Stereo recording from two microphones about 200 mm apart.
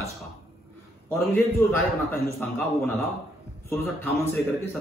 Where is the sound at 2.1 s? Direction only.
10° left (ahead or behind).